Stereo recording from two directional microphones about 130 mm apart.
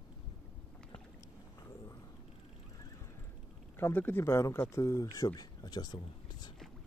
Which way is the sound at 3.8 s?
15° left (ahead or behind).